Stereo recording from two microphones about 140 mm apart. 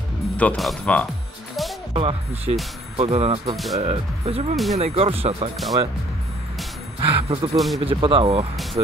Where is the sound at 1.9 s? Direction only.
40° right (ahead or behind).